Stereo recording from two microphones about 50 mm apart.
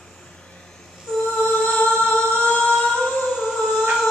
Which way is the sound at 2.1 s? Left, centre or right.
Centre.